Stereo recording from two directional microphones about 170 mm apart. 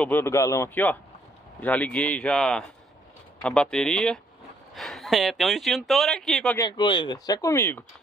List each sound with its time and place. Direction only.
0.0 s a man's voice: 10° left (ahead or behind)
6.6 s speech: 25° left (ahead or behind)